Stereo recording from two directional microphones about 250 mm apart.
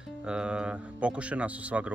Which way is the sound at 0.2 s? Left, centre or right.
Centre.